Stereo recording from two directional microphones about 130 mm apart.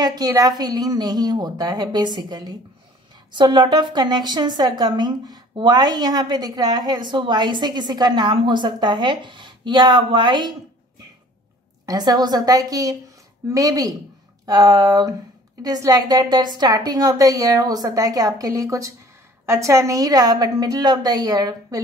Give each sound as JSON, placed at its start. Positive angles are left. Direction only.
{"t": 0.0, "sound": "a woman's voice", "side_deg": -30}
{"t": 11.8, "sound": "a woman's voice", "side_deg": -30}